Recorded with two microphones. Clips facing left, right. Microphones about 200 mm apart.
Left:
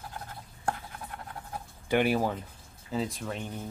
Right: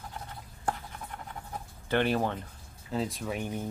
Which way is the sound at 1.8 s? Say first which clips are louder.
Left 2 dB; 10° left (ahead or behind).